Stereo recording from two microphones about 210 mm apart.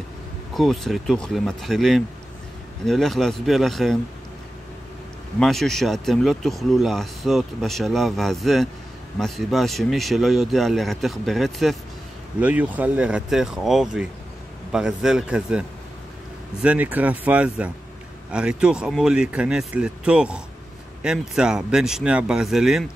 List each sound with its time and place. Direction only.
0.6 s speech: centre (ahead or behind)
5.4 s speech: centre (ahead or behind)
16.6 s speech: 10° right (ahead or behind)